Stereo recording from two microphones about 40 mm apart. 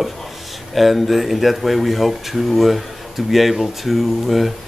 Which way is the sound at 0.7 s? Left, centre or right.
Centre.